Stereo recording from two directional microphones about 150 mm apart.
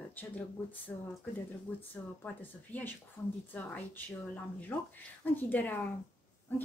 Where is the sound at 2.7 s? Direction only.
10° left (ahead or behind).